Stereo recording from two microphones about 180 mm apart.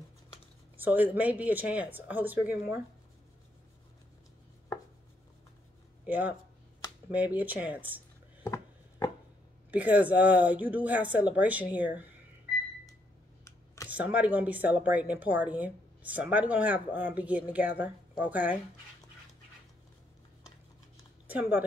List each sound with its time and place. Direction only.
0.7 s speech: 10° right (ahead or behind)
6.0 s speech: 10° right (ahead or behind)
9.7 s speech: 10° right (ahead or behind)
13.8 s speech: 10° right (ahead or behind)
21.3 s speech: 10° right (ahead or behind)